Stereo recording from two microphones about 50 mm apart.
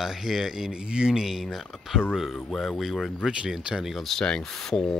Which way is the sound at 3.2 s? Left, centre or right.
Right.